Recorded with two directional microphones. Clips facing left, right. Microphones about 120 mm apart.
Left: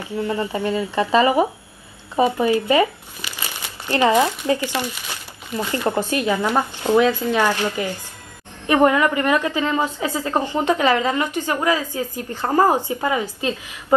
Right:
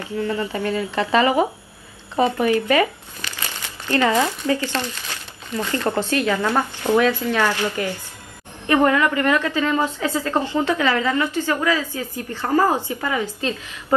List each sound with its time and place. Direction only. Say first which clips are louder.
0.0 s a woman's voice: even; 20° left (ahead or behind)